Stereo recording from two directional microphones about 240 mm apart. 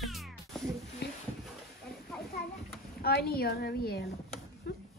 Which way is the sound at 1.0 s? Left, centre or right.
Left.